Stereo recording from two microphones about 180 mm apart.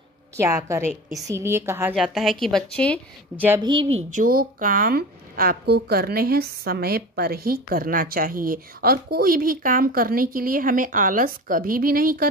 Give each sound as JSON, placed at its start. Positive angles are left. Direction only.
{"t": 0.4, "sound": "a woman's voice", "side_deg": -15}
{"t": 2.0, "sound": "a woman's voice", "side_deg": 0}
{"t": 3.6, "sound": "a woman's voice", "side_deg": -30}
{"t": 4.1, "sound": "speech", "side_deg": -50}